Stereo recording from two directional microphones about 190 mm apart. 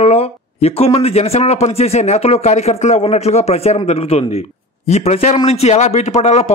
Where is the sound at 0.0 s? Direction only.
30° left (ahead or behind).